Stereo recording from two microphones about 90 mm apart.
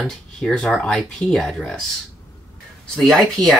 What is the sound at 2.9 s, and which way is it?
Speech, 5° left (ahead or behind).